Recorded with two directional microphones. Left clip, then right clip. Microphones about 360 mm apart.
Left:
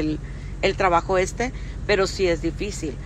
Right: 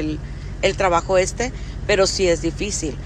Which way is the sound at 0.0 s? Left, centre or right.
Centre.